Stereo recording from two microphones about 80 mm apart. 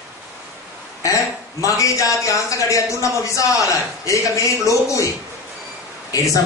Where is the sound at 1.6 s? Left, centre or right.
Left.